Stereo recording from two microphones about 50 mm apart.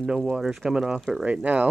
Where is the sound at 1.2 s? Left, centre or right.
Right.